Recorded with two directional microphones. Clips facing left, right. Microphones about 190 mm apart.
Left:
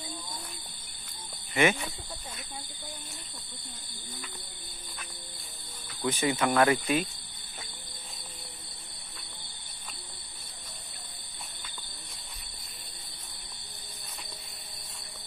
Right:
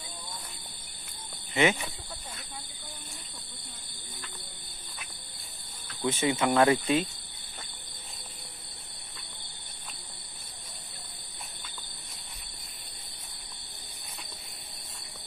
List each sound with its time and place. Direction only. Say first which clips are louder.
1.5 s speech: even; 20° right (ahead or behind)
6.0 s speech: right 1 dB; 25° right (ahead or behind)